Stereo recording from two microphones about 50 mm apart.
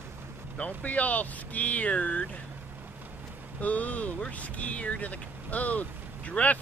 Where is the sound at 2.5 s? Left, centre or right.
Right.